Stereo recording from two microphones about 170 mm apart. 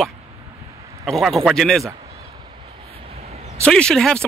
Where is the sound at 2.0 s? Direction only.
35° right (ahead or behind).